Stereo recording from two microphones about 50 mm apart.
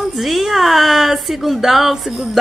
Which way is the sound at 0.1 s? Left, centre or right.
Centre.